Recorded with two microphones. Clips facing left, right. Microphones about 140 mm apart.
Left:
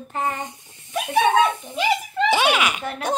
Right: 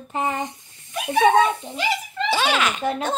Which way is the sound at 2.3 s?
10° left (ahead or behind).